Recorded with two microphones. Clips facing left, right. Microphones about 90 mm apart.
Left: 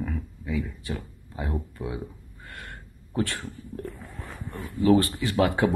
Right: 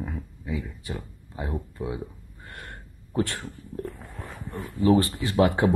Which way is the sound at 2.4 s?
30° right (ahead or behind).